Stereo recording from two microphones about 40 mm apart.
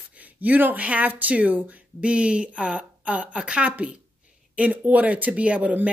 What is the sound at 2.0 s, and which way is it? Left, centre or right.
A woman's voice, right.